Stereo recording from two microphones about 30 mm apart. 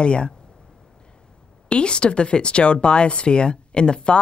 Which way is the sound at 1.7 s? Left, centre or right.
Left.